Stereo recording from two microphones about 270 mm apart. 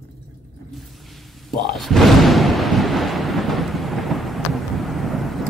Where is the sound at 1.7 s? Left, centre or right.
Centre.